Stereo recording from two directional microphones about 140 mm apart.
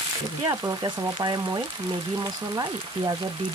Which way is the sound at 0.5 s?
25° right (ahead or behind).